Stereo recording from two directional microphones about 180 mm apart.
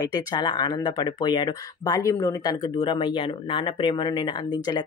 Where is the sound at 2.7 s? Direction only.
25° left (ahead or behind).